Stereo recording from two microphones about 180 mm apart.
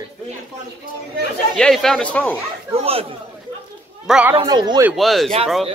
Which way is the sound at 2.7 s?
35° right (ahead or behind).